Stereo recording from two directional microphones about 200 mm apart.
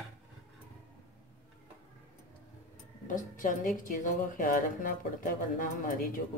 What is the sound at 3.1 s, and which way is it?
A woman's voice, 40° left (ahead or behind).